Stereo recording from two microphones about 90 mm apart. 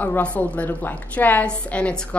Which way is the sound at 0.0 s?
20° left (ahead or behind).